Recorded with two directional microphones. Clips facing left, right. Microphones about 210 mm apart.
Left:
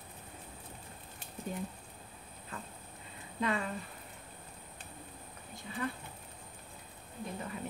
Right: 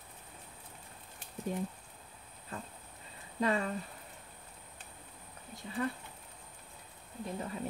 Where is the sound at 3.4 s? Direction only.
35° right (ahead or behind).